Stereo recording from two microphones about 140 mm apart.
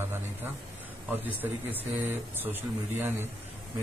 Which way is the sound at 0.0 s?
15° right (ahead or behind).